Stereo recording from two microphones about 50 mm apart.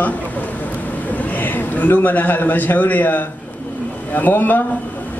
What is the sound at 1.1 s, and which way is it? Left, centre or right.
A man's voice, left.